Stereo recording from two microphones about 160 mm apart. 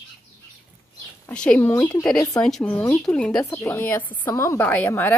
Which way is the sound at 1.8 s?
20° left (ahead or behind).